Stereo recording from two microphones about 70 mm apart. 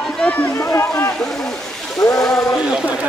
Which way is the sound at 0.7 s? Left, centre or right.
Left.